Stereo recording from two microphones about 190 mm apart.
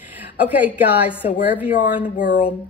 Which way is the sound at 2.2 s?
45° left (ahead or behind).